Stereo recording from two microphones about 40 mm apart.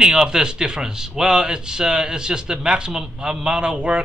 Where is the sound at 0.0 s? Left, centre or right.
Centre.